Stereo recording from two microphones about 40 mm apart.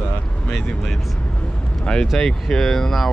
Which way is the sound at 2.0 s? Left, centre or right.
Centre.